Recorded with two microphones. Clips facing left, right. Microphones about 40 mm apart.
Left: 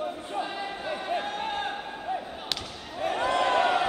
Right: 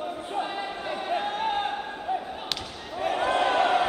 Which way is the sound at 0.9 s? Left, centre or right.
Centre.